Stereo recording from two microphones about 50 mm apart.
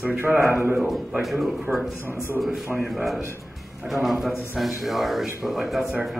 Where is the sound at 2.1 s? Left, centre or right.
Left.